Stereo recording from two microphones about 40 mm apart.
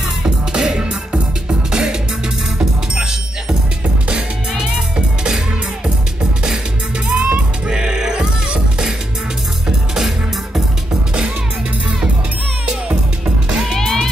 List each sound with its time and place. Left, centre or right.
0.2 s music: centre
4.6 s music: right
7.1 s music: right
12.6 s music: right
13.7 s music: centre